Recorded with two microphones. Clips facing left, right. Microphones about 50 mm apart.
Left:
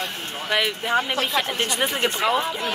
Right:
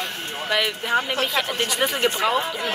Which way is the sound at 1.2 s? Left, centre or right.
Left.